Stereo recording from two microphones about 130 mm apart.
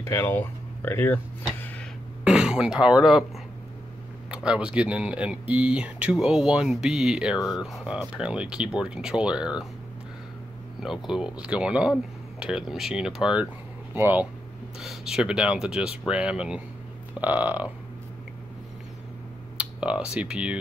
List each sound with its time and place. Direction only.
0.0 s speech: 15° left (ahead or behind)
2.2 s speech: 5° right (ahead or behind)
4.3 s speech: 10° right (ahead or behind)
10.8 s speech: 5° right (ahead or behind)
13.9 s speech: 15° right (ahead or behind)
14.8 s speech: 5° right (ahead or behind)
19.5 s speech: 10° right (ahead or behind)